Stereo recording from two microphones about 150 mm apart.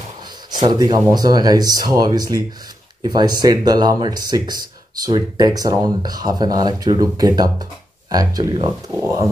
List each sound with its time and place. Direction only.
0.6 s speech: 25° right (ahead or behind)